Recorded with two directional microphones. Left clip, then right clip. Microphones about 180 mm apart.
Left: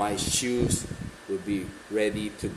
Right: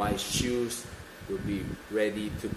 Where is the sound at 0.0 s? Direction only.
25° left (ahead or behind).